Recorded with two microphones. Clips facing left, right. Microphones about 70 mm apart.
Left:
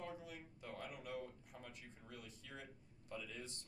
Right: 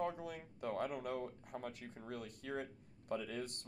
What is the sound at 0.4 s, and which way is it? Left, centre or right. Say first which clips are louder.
Speech: right 11 dB; right.